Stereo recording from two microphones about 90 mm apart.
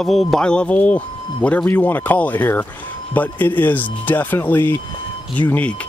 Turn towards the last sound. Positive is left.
turn(degrees=15)  # may be behind; listen again after turning